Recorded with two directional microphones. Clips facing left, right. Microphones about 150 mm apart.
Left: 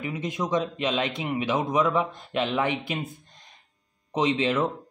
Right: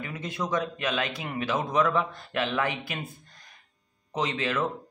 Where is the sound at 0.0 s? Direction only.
15° left (ahead or behind).